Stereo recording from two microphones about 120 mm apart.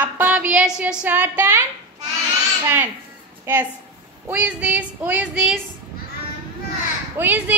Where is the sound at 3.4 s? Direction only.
15° right (ahead or behind).